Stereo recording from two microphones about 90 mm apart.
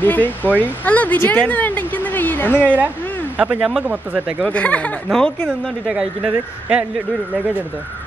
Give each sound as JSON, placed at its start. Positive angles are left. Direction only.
{"t": 0.0, "sound": "a woman's voice", "side_deg": 20}
{"t": 2.6, "sound": "a woman's voice", "side_deg": -20}
{"t": 4.5, "sound": "speech", "side_deg": 15}
{"t": 5.9, "sound": "speech", "side_deg": -10}